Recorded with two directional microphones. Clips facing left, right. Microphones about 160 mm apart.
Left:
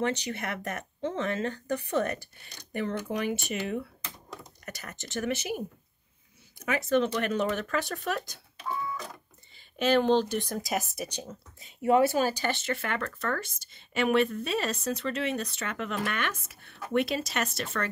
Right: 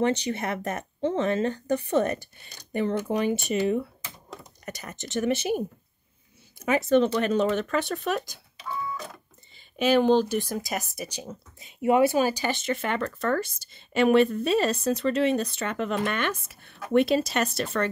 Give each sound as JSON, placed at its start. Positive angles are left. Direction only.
{"t": 0.0, "sound": "speech", "side_deg": -25}
{"t": 6.6, "sound": "speech", "side_deg": -25}
{"t": 9.8, "sound": "speech", "side_deg": -10}
{"t": 11.6, "sound": "speech", "side_deg": -15}
{"t": 13.0, "sound": "speech", "side_deg": -35}